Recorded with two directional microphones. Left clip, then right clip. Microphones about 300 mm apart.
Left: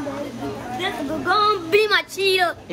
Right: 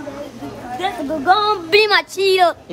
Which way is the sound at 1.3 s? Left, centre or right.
Centre.